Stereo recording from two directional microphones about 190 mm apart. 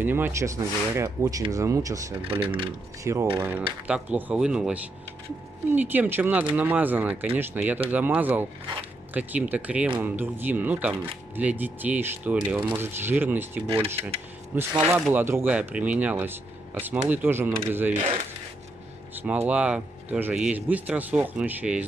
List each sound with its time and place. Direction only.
0.0 s speech: 10° right (ahead or behind)
2.4 s speech: 30° right (ahead or behind)
3.0 s speech: 15° right (ahead or behind)
19.2 s speech: 10° right (ahead or behind)